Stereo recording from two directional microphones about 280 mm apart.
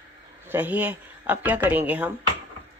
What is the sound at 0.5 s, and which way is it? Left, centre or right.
Speech, centre.